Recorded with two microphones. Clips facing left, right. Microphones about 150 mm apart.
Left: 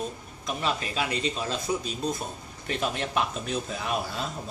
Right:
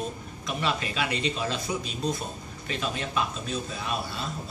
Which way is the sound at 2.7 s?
70° left (ahead or behind).